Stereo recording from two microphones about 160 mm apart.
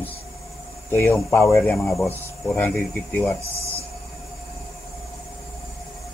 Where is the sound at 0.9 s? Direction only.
15° left (ahead or behind).